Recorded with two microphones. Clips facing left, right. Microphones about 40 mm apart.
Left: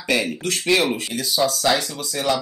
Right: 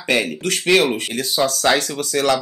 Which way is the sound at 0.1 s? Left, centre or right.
Right.